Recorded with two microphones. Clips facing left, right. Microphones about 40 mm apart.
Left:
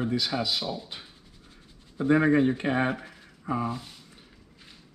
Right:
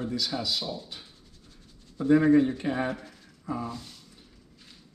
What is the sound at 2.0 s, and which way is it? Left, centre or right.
Speech, left.